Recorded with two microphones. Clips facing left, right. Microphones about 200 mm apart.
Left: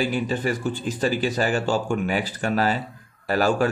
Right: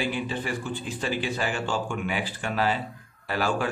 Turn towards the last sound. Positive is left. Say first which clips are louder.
# left 6 dB
turn(degrees=40)  # may be behind; listen again after turning